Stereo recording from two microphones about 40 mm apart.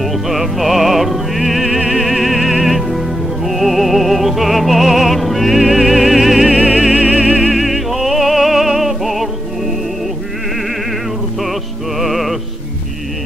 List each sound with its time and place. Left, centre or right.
0.0 s music: centre
6.7 s music: right
7.5 s music: centre
12.0 s music: centre